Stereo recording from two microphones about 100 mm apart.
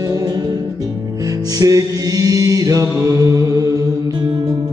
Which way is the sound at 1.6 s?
35° right (ahead or behind).